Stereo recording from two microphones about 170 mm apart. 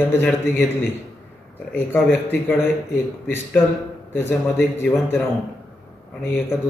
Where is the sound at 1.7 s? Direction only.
10° left (ahead or behind).